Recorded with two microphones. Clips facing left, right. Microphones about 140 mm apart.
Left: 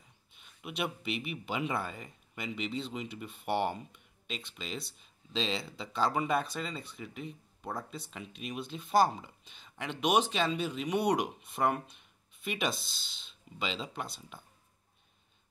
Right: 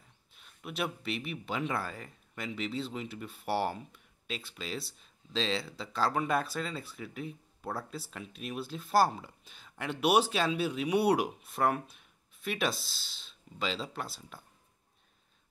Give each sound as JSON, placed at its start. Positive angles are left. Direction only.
{"t": 0.3, "sound": "speech", "side_deg": 0}